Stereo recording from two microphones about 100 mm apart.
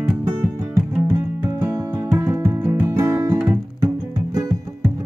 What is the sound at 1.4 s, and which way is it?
Music, 15° right (ahead or behind).